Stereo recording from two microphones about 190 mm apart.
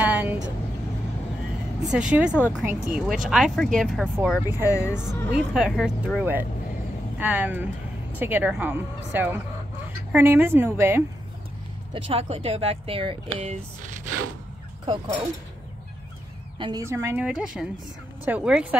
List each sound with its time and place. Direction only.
0.0 s vehicle: 10° right (ahead or behind)
1.9 s speech: 5° right (ahead or behind)
4.6 s speech: 15° left (ahead or behind)
5.3 s a woman's voice: 5° right (ahead or behind)
12.1 s speech: 30° right (ahead or behind)
16.5 s a woman's voice: 25° right (ahead or behind)
16.8 s a woman's voice: 15° right (ahead or behind)